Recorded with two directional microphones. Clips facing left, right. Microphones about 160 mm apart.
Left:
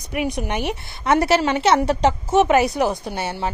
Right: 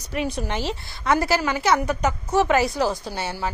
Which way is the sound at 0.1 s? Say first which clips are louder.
Left 2 dB; 15° left (ahead or behind).